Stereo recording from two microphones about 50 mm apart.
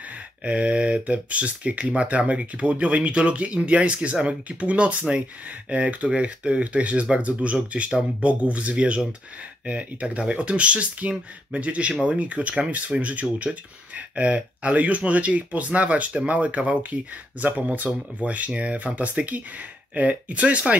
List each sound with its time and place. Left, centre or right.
0.1 s speech: right